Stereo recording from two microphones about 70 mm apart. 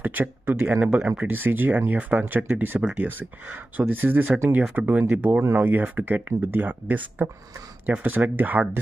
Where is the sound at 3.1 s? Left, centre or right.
Right.